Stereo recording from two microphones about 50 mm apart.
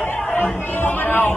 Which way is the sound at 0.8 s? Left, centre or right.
Left.